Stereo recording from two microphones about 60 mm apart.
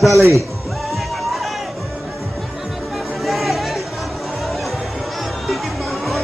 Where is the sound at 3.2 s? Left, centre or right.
Centre.